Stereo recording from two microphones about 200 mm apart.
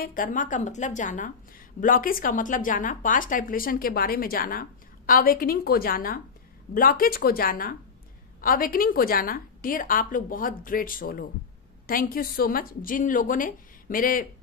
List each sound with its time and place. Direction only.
0.0 s a woman's voice: 45° left (ahead or behind)